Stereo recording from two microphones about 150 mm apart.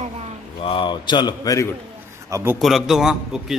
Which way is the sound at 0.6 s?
35° left (ahead or behind).